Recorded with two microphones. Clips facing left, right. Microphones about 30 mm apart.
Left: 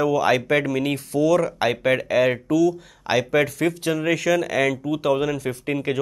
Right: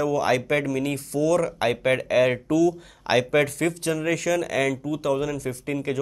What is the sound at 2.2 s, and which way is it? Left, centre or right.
Speech, centre.